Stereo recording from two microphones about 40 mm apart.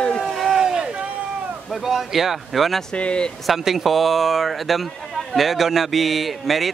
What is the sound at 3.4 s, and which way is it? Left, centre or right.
A man's voice, centre.